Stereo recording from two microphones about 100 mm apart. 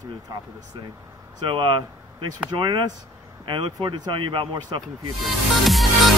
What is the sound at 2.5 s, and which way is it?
Speech, 45° right (ahead or behind).